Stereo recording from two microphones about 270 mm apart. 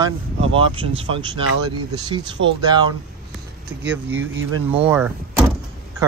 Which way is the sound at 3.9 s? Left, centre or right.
Centre.